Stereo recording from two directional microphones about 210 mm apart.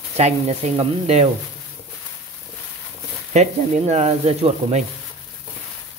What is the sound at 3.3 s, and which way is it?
Speech, 30° right (ahead or behind).